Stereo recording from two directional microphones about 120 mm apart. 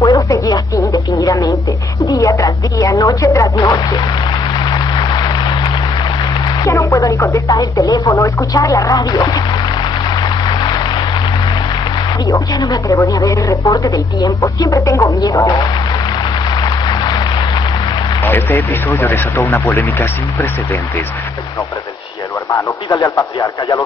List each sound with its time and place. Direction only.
0.0 s a sound: 30° left (ahead or behind)
4.9 s music: 40° left (ahead or behind)
6.6 s speech: 25° left (ahead or behind)
12.3 s speech: 25° left (ahead or behind)
16.6 s a sound: 35° left (ahead or behind)
18.2 s speech: 15° left (ahead or behind)
22.8 s speech: 25° left (ahead or behind)